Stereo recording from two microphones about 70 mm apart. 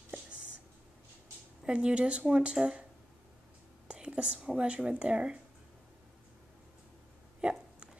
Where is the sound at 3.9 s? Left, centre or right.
Centre.